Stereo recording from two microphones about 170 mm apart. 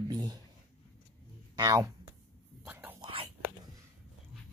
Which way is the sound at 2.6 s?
10° right (ahead or behind).